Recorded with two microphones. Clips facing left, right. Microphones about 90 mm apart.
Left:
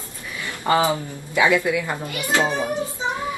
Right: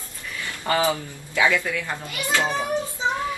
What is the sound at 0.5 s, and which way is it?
Speech, 20° left (ahead or behind).